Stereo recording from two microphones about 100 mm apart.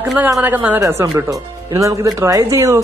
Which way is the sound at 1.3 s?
35° right (ahead or behind).